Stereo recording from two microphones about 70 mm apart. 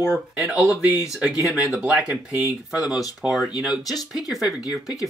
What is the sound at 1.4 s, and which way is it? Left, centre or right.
Speech, centre.